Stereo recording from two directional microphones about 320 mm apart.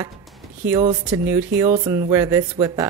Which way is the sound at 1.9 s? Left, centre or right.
Centre.